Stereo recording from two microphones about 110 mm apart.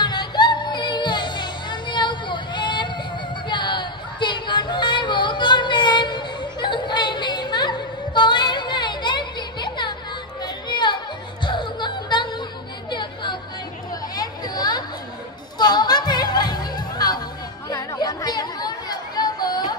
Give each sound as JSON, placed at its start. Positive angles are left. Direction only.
{"t": 0.0, "sound": "music", "side_deg": 40}
{"t": 3.4, "sound": "a sound", "side_deg": 45}
{"t": 10.4, "sound": "chatter", "side_deg": 45}
{"t": 11.4, "sound": "music", "side_deg": 45}
{"t": 12.9, "sound": "chatter", "side_deg": 45}
{"t": 14.1, "sound": "a sound", "side_deg": 35}
{"t": 15.5, "sound": "music", "side_deg": 40}
{"t": 17.6, "sound": "chatter", "side_deg": 35}